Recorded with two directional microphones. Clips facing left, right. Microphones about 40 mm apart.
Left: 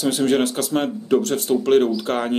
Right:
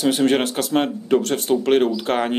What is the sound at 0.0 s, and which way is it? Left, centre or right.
Speech, right.